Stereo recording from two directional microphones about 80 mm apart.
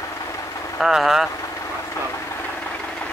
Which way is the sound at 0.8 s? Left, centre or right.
Centre.